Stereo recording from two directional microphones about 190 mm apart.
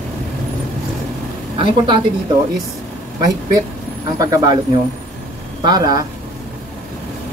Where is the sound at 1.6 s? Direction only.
25° right (ahead or behind).